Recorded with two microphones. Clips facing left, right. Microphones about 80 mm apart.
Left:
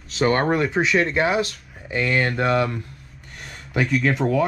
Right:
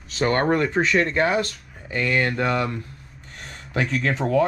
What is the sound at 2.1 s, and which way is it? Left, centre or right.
Speech, left.